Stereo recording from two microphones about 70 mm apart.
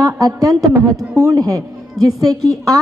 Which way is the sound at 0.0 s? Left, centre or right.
Right.